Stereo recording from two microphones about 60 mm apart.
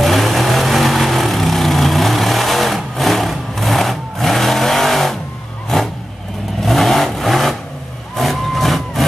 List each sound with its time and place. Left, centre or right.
0.0 s vehicle: centre